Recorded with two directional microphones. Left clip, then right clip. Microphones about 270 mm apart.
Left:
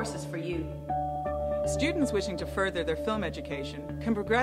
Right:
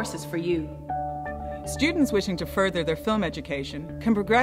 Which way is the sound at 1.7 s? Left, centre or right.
Right.